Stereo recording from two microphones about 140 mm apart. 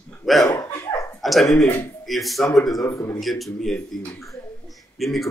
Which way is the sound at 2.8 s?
20° left (ahead or behind).